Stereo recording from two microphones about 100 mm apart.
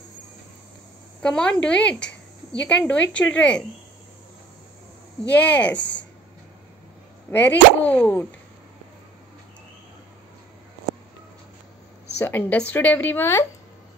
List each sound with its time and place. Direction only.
1.2 s speech: 10° left (ahead or behind)
5.3 s speech: 15° left (ahead or behind)
7.2 s speech: 20° left (ahead or behind)
12.2 s speech: 20° left (ahead or behind)